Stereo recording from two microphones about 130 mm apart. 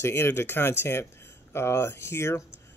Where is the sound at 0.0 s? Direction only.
20° left (ahead or behind).